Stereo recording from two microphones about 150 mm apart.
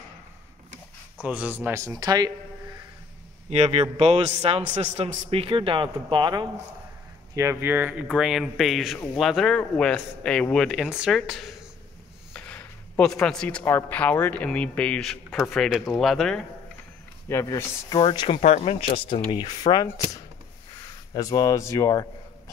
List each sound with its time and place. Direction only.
1.2 s speech: 10° right (ahead or behind); by 2.3 s 25° right (ahead or behind)
3.4 s a man's voice: 45° right (ahead or behind)
5.3 s speech: 40° right (ahead or behind)
7.3 s speech: 15° right (ahead or behind); by 11.5 s centre (ahead or behind)
12.4 s a sound: 10° left (ahead or behind)
13.1 s speech: 5° left (ahead or behind)
17.3 s speech: 15° left (ahead or behind); by 18.4 s 35° left (ahead or behind)
18.4 s speech: 50° left (ahead or behind); by 22.0 s 20° left (ahead or behind)